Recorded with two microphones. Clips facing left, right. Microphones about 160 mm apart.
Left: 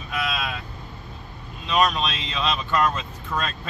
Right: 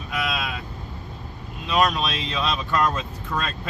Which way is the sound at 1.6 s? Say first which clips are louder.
Even; 5° right (ahead or behind).